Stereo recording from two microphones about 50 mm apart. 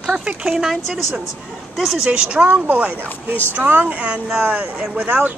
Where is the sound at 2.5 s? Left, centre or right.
Right.